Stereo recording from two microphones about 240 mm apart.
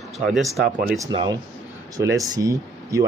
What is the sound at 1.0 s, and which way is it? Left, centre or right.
Speech, centre.